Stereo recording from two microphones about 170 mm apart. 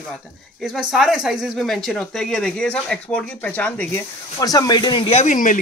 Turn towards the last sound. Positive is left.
turn(degrees=50)  # may be behind; listen again after turning